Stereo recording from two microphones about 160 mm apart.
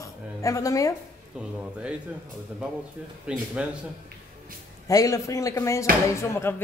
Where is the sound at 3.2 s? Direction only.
5° right (ahead or behind).